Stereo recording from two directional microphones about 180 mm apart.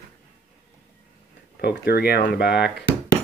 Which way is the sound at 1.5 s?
65° left (ahead or behind).